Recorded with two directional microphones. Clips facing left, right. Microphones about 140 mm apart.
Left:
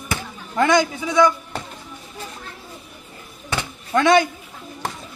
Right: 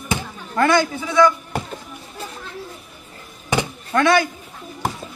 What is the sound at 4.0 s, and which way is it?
Speech, 20° left (ahead or behind).